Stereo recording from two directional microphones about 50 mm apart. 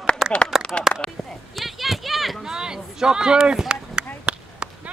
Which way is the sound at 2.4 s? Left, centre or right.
Centre.